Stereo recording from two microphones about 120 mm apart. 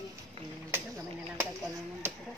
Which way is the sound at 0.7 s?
20° right (ahead or behind).